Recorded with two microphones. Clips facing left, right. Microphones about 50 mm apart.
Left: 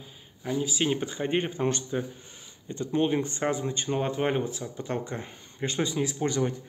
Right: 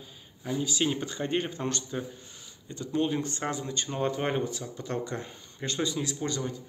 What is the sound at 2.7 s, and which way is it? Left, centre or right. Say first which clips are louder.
Speech: left 3 dB; left.